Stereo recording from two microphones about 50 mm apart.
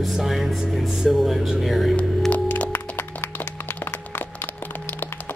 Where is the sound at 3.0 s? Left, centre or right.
Left.